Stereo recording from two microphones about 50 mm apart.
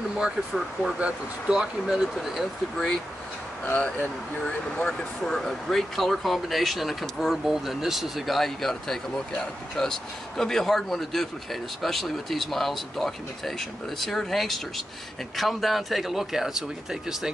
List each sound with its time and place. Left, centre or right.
0.2 s speech: centre
3.6 s speech: left
5.2 s speech: centre
8.4 s speech: centre